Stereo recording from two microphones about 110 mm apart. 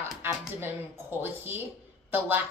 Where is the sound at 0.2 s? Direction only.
20° right (ahead or behind).